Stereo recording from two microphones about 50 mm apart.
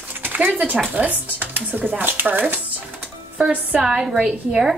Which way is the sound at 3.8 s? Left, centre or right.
Centre.